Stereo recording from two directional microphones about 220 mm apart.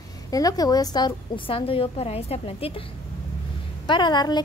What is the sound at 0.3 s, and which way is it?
Speech, 15° left (ahead or behind).